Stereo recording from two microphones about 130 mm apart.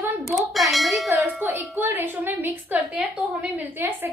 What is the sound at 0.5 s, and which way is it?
Bell, centre (ahead or behind).